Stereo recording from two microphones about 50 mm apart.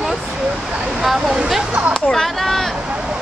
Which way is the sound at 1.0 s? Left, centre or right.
Centre.